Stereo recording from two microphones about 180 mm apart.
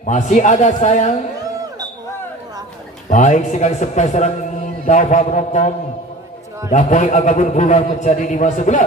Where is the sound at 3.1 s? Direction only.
40° left (ahead or behind).